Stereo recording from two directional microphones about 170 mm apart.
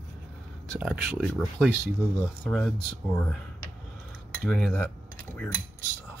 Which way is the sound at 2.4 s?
5° left (ahead or behind).